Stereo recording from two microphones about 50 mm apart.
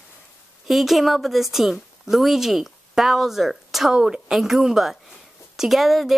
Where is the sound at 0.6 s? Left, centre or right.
Centre.